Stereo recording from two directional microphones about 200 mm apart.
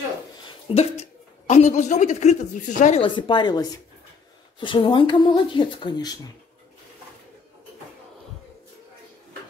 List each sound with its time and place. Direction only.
0.5 s a sound: 30° left (ahead or behind)
1.5 s a woman's voice: 35° left (ahead or behind)
3.0 s speech: 25° left (ahead or behind)